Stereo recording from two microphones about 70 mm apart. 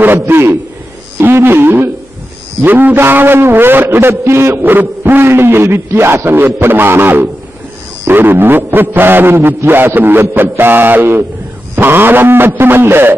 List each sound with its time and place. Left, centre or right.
0.0 s a man's voice: right